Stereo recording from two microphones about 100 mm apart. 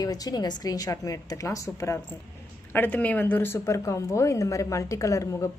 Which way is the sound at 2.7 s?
20° left (ahead or behind).